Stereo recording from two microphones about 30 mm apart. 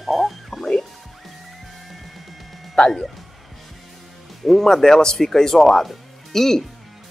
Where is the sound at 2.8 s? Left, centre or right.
Left.